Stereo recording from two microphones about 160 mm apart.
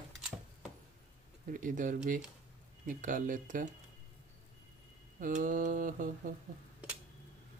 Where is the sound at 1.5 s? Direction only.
55° right (ahead or behind).